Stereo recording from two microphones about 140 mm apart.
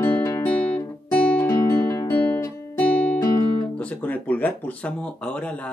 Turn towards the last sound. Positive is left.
turn(degrees=10)  # may be behind; listen again after turning